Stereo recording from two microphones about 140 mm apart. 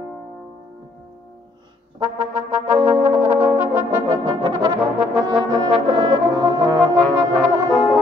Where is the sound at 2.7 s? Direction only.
10° right (ahead or behind).